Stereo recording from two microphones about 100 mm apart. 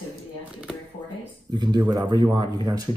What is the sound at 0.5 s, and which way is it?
Shuffling cards, 10° right (ahead or behind).